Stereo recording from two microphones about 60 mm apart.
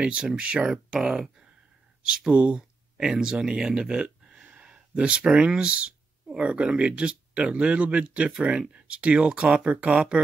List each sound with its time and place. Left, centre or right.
0.0 s speech: centre